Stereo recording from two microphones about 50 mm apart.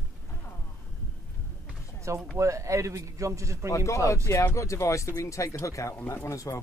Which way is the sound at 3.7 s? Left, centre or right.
Left.